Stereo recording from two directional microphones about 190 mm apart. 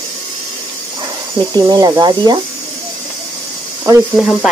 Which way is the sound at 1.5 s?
20° right (ahead or behind).